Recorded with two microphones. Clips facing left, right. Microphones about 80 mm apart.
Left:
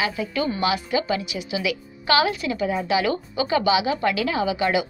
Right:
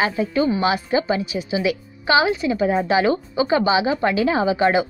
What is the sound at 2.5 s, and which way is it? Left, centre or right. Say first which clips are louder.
A woman's voice: right 5 dB; right.